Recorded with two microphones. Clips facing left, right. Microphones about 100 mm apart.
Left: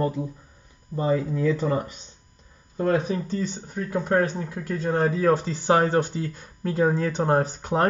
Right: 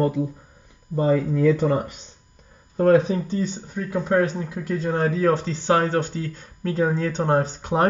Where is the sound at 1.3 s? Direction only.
50° right (ahead or behind).